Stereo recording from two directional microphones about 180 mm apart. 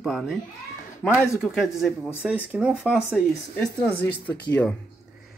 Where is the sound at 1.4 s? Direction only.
Centre (ahead or behind).